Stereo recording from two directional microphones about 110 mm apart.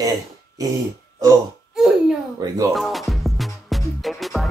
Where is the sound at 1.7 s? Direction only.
Centre (ahead or behind).